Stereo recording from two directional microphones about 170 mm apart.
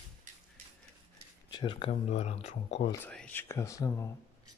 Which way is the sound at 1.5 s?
30° left (ahead or behind).